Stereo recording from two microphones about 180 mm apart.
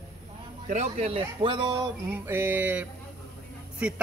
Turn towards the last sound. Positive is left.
turn(degrees=-5)  # may be behind; listen again after turning